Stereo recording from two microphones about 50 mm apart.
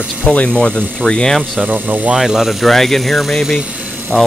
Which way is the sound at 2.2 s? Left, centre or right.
Centre.